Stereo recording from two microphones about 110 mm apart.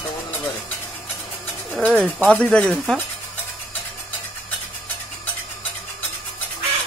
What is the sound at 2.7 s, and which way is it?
Speech, centre (ahead or behind).